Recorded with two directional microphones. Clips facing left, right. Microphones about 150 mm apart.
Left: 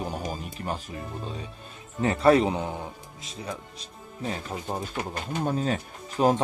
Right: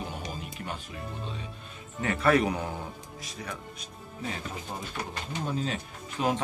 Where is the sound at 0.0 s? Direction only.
40° left (ahead or behind).